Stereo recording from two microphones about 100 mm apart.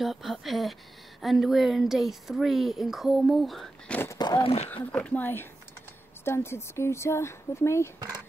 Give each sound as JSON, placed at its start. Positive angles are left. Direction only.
{"t": 0.0, "sound": "speech", "side_deg": 0}
{"t": 4.2, "sound": "speech", "side_deg": 45}
{"t": 4.9, "sound": "speech", "side_deg": 15}